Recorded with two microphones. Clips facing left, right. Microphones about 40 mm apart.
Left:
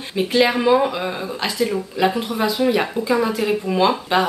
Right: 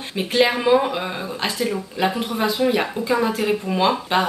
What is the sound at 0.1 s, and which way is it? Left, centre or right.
Speech, centre.